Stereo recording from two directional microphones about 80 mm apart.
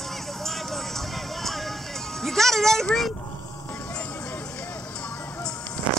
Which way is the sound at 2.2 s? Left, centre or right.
Centre.